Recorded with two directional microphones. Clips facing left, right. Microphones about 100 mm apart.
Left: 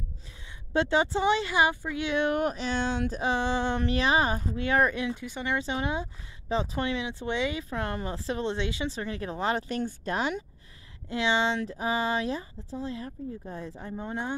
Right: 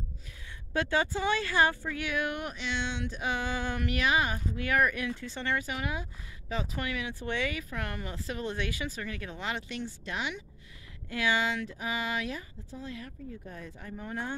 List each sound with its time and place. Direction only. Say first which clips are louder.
0.7 s speech: left 4 dB; 25° left (ahead or behind)
5.6 s speech: left 5 dB; 30° left (ahead or behind)
11.1 s speech: left 3 dB; 25° left (ahead or behind)